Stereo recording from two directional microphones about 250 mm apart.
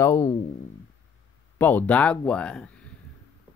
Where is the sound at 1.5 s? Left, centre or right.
Centre.